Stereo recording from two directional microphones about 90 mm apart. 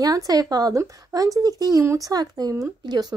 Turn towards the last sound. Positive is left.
turn(degrees=-50)  # may be behind; listen again after turning